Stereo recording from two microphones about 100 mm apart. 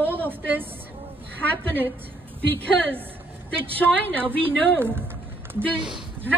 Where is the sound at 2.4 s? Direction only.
15° left (ahead or behind).